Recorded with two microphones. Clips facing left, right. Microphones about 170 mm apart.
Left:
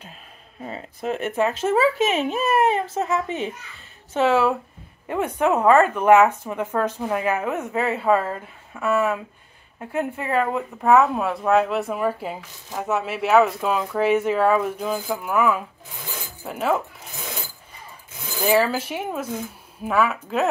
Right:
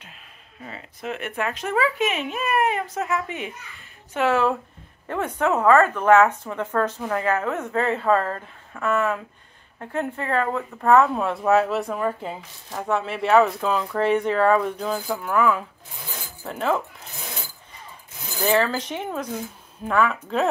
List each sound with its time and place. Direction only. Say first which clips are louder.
0.7 s speech: left 5 dB; 35° left (ahead or behind)
1.3 s speech: left 5 dB; 25° left (ahead or behind)
4.3 s speech: even; 10° left (ahead or behind)
11.9 s speech: left 1 dB; 10° left (ahead or behind)
18.5 s speech: left 2 dB; 10° left (ahead or behind)